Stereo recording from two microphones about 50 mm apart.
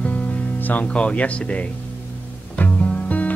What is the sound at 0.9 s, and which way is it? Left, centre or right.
Speech, left.